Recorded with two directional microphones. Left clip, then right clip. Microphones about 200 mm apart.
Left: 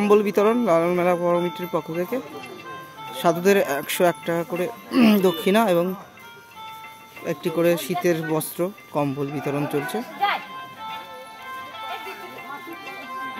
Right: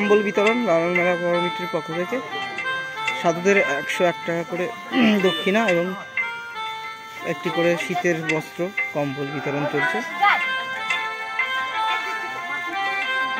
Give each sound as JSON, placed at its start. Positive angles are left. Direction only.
{"t": 0.0, "sound": "speech", "side_deg": 15}
{"t": 3.2, "sound": "speech", "side_deg": 15}
{"t": 5.0, "sound": "speech", "side_deg": 20}
{"t": 7.2, "sound": "speech", "side_deg": 10}